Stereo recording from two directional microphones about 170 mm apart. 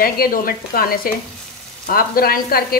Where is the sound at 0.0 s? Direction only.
60° left (ahead or behind).